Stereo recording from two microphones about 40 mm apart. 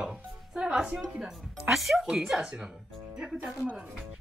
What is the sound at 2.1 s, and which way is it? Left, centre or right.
Speech, centre.